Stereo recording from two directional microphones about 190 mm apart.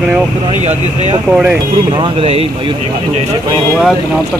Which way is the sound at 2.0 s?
30° right (ahead or behind).